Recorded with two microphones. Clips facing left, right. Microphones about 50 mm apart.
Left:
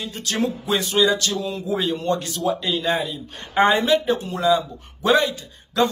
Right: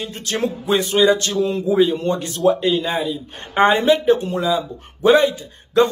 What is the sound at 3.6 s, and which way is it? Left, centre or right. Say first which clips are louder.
A man's voice: right 3 dB; right.